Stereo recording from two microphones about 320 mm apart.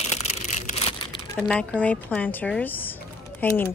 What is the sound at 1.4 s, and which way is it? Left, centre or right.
A woman's voice, centre.